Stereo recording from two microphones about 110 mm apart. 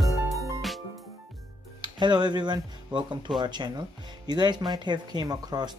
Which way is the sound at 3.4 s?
40° right (ahead or behind).